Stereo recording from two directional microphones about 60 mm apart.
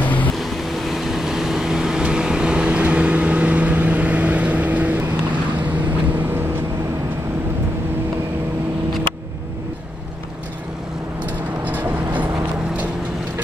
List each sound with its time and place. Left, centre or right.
0.0 s vehicle: left
0.4 s vehicle: centre; by 6.4 s right
11.7 s vehicle: right